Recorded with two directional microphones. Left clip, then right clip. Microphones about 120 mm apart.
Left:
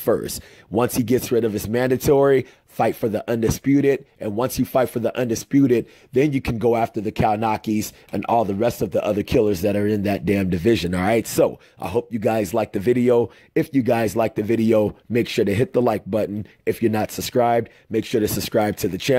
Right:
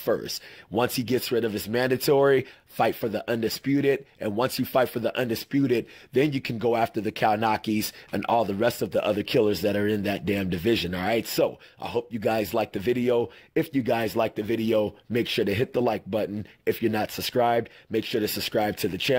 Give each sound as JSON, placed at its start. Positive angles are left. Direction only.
{"t": 0.0, "sound": "speech", "side_deg": 40}
{"t": 6.8, "sound": "speech", "side_deg": 15}